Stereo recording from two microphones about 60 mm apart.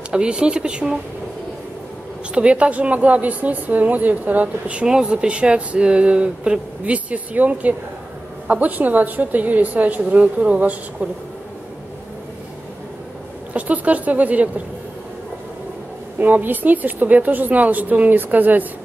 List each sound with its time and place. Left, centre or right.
0.1 s speech: centre
2.3 s speech: centre
13.5 s a woman's voice: right
16.2 s speech: right